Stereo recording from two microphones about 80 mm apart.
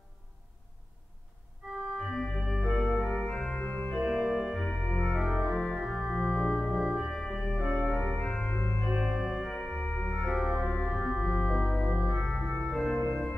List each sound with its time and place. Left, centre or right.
2.1 s organ: centre
3.5 s organ: centre
3.9 s organ: centre
4.6 s organ: centre
5.0 s organ: centre
8.1 s organ: centre
8.8 s organ: centre
10.2 s organ: centre